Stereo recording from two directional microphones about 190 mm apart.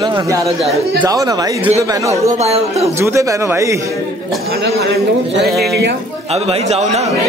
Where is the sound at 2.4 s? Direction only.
35° right (ahead or behind).